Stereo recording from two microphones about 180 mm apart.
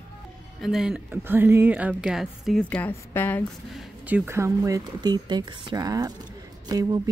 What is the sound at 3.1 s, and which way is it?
Speech, 10° left (ahead or behind).